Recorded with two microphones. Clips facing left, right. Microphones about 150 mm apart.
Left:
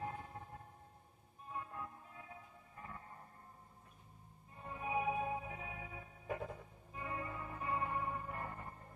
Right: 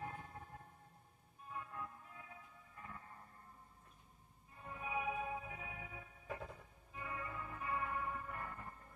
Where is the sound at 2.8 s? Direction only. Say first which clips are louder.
Left 2 dB; 35° left (ahead or behind).